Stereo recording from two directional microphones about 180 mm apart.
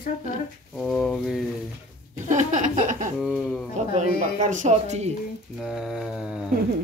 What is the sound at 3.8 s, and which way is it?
Speech, 40° right (ahead or behind).